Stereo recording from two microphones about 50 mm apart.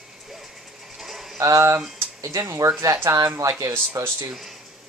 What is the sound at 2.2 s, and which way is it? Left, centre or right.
Speech, right.